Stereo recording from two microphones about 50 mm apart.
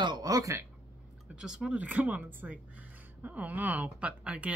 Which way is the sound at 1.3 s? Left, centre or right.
Centre.